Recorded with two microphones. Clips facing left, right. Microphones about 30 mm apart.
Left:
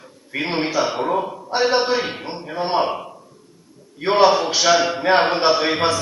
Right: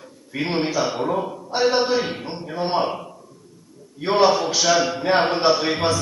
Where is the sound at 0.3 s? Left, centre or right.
Left.